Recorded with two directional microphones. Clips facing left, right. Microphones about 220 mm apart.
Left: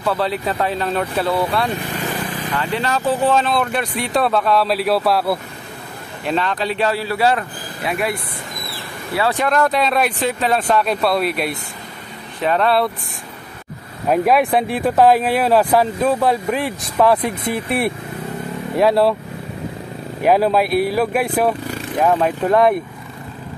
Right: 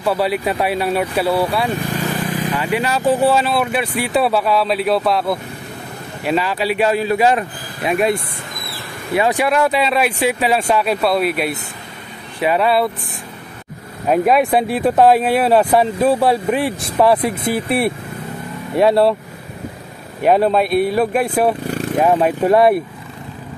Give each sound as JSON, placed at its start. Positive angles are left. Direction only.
{"t": 0.0, "sound": "speech", "side_deg": -10}
{"t": 6.2, "sound": "speech", "side_deg": -5}
{"t": 14.1, "sound": "speech", "side_deg": 0}
{"t": 20.2, "sound": "speech", "side_deg": 0}